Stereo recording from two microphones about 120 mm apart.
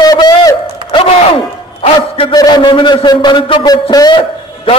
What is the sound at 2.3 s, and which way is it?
A man's voice, 35° left (ahead or behind).